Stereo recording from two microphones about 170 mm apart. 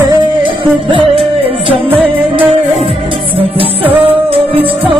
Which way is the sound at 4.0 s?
30° right (ahead or behind).